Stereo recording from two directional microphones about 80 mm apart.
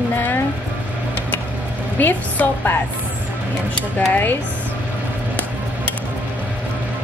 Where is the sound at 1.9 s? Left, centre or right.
Left.